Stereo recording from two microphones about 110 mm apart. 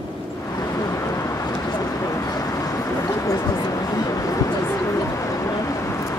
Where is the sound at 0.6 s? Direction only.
30° left (ahead or behind).